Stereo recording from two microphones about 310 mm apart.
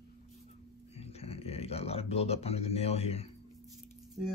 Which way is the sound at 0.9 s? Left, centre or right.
Centre.